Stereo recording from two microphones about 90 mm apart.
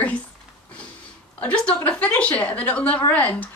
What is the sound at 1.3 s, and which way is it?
A woman's voice, 15° left (ahead or behind).